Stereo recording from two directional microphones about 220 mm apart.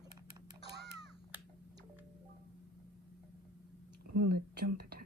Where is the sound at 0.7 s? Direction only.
50° right (ahead or behind).